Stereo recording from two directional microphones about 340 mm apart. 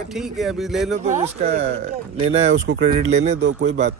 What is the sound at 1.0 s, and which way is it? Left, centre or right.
Speech, centre.